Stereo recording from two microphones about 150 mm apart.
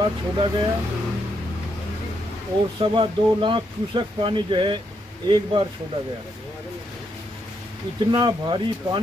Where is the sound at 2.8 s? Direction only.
35° right (ahead or behind).